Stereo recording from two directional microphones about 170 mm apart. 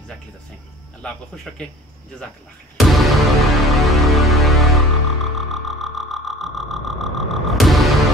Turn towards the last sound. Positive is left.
turn(degrees=0)  # may be behind; listen again after turning